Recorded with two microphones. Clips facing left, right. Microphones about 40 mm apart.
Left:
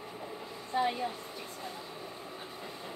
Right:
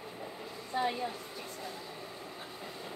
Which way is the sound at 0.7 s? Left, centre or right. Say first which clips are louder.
Left 2 dB; centre.